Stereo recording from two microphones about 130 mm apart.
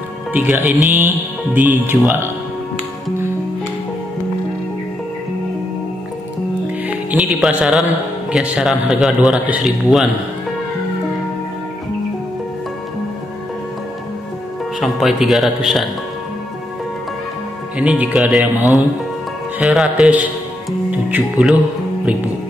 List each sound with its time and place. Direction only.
0.3 s speech: 15° right (ahead or behind)
7.1 s speech: 5° right (ahead or behind)
14.8 s speech: centre (ahead or behind)
17.7 s speech: 10° right (ahead or behind)